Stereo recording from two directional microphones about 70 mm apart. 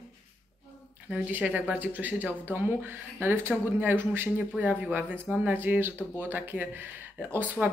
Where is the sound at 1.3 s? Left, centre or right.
Right.